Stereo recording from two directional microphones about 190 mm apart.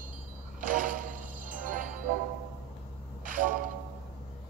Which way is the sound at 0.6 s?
45° right (ahead or behind).